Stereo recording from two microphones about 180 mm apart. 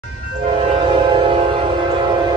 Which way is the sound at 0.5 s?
30° right (ahead or behind).